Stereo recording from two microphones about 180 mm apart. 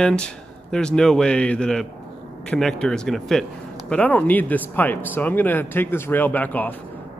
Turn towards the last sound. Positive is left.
turn(degrees=10)  # may be behind; listen again after turning